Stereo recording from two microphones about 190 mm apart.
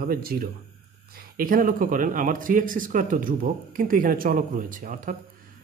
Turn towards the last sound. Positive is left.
turn(degrees=-45)  # may be behind; listen again after turning